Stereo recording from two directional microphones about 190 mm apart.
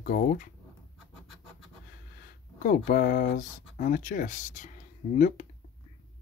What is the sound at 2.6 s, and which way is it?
Speech, 50° left (ahead or behind).